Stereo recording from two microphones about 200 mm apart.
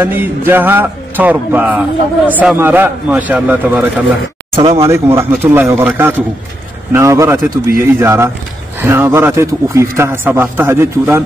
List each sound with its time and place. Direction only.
0.0 s mantra: 10° right (ahead or behind)
4.6 s speech: 25° right (ahead or behind)
4.8 s mantra: 15° right (ahead or behind)